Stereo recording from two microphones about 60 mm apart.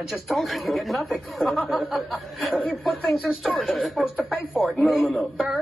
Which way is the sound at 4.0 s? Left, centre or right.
Centre.